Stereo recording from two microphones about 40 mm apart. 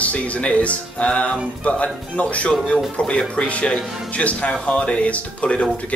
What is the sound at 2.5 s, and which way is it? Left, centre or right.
Speech, centre.